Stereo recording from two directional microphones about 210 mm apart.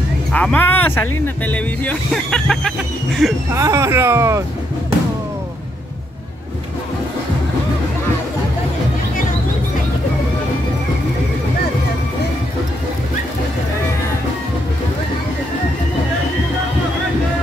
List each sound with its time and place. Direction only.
0.3 s speech: 5° left (ahead or behind)
3.5 s speech: 15° right (ahead or behind)